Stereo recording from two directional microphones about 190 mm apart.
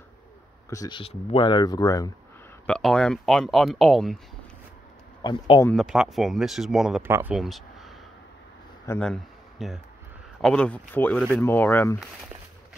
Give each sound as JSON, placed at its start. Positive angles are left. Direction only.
{"t": 0.7, "sound": "speech", "side_deg": 20}
{"t": 2.6, "sound": "speech", "side_deg": 5}
{"t": 5.2, "sound": "speech", "side_deg": 25}
{"t": 5.7, "sound": "speech", "side_deg": 0}
{"t": 7.3, "sound": "speech", "side_deg": 0}
{"t": 8.8, "sound": "speech", "side_deg": 15}
{"t": 9.1, "sound": "a sound", "side_deg": 0}
{"t": 10.4, "sound": "speech", "side_deg": 5}